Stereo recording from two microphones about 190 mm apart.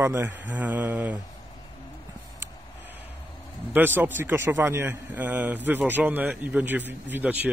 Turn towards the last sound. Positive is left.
turn(degrees=-10)  # may be behind; listen again after turning